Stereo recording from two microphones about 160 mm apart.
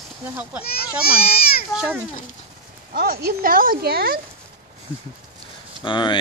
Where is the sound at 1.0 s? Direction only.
70° left (ahead or behind).